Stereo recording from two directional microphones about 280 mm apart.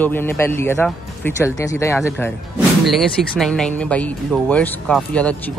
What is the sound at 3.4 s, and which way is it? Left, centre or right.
Speech, centre.